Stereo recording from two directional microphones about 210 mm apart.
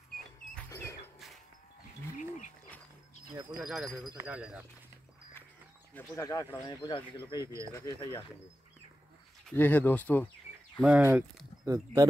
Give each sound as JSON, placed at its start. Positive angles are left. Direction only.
{"t": 0.6, "sound": "a sound", "side_deg": 15}
{"t": 3.5, "sound": "speech", "side_deg": -5}
{"t": 5.9, "sound": "speech", "side_deg": 15}
{"t": 9.5, "sound": "speech", "side_deg": 10}
{"t": 10.8, "sound": "speech", "side_deg": -10}